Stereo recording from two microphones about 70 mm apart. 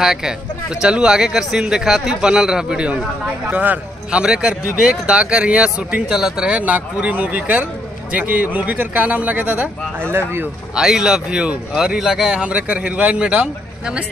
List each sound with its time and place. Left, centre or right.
0.0 s speech: centre
9.9 s speech: right
10.7 s speech: centre